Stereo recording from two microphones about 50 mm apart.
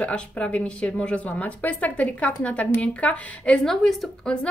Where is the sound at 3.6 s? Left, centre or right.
Centre.